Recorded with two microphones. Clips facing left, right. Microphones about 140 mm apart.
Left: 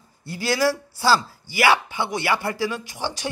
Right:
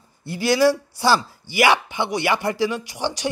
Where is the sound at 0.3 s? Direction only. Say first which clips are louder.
Right 4 dB; 15° right (ahead or behind).